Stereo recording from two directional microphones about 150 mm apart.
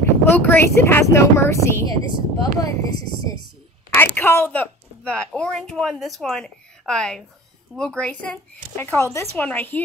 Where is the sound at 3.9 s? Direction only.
15° left (ahead or behind).